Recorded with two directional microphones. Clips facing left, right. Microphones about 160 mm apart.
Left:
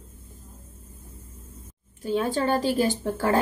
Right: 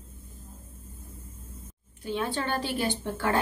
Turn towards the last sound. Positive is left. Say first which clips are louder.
# left 4 dB
turn(degrees=40)  # may be behind; listen again after turning